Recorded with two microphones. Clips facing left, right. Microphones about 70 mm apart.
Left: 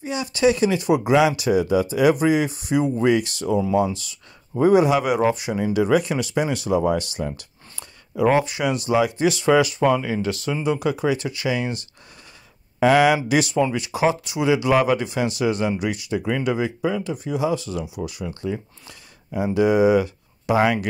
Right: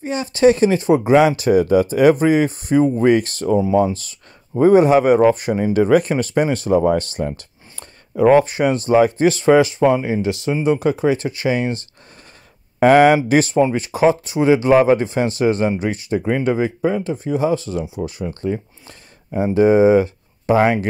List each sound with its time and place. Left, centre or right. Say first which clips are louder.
0.0 s speech: right 5 dB; right
12.8 s speech: right 5 dB; right